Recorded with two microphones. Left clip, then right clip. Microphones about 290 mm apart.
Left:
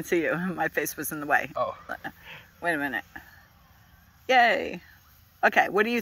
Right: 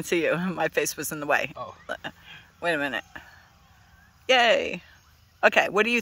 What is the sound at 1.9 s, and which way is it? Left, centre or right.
Frog, centre.